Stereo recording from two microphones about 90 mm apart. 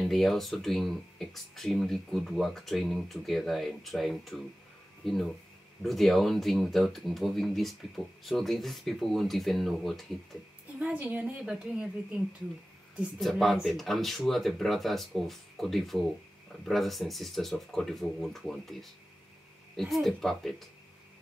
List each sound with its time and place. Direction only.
0.0 s speech: centre (ahead or behind)
10.8 s a woman's voice: 20° right (ahead or behind)
13.2 s speech: centre (ahead or behind)